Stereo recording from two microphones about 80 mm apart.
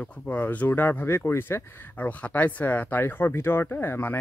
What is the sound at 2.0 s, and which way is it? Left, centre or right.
Speech, centre.